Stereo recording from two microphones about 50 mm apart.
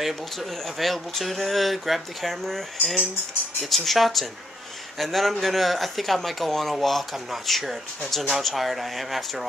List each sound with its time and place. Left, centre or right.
0.0 s speech: centre